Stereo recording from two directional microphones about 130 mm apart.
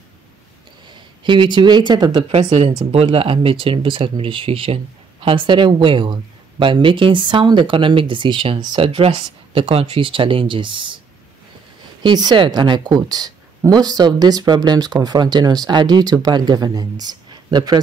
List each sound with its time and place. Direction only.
1.2 s speech: 40° right (ahead or behind)
2.3 s speech: 55° right (ahead or behind)
12.0 s speech: 35° right (ahead or behind)